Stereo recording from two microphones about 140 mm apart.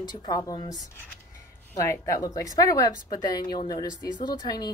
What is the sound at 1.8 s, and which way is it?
A woman's voice, 25° left (ahead or behind).